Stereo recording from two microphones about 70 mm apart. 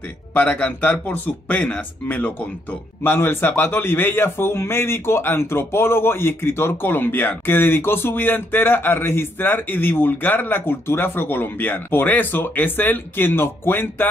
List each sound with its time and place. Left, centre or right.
0.3 s speech: left
3.0 s a man's voice: left